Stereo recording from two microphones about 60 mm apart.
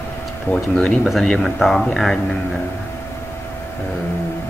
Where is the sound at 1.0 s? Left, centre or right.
Centre.